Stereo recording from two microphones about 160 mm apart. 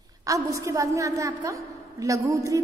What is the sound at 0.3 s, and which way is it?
A woman's voice, 20° right (ahead or behind).